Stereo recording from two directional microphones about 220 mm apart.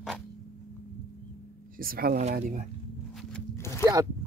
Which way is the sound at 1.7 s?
40° right (ahead or behind).